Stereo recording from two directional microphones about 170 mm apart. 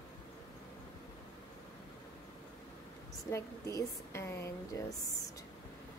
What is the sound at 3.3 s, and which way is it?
A woman's voice, 20° left (ahead or behind).